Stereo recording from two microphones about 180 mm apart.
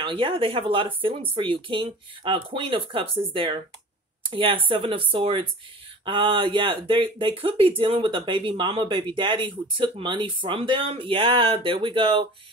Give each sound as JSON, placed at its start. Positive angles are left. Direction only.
{"t": 0.0, "sound": "speech", "side_deg": -30}